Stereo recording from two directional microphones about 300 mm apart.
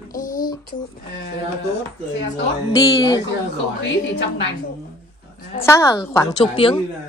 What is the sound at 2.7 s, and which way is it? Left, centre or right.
Speech, centre.